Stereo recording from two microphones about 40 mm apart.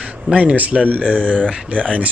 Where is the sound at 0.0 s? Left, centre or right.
Right.